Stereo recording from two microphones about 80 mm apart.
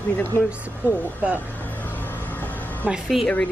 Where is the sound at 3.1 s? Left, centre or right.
Centre.